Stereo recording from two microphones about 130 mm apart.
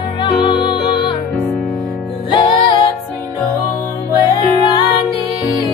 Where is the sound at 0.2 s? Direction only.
40° left (ahead or behind).